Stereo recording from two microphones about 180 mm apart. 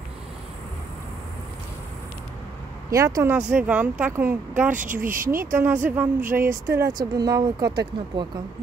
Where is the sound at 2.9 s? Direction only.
15° right (ahead or behind).